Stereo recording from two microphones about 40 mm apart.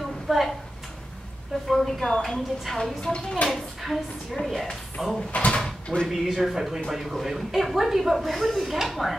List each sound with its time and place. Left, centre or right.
0.0 s a sound: centre
1.7 s speech: centre
3.8 s speech: centre
5.3 s speech: left
5.6 s speech: left
6.0 s speech: centre